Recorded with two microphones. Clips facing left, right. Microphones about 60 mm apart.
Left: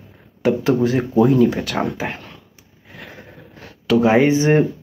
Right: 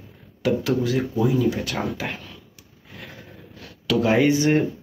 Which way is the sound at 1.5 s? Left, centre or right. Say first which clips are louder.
Left 2 dB; left.